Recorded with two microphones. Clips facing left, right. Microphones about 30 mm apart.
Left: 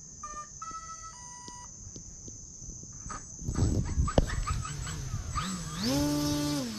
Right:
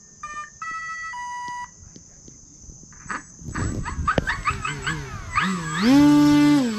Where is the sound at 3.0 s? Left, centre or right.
Right.